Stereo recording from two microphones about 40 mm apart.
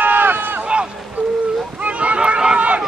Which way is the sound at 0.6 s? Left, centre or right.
Right.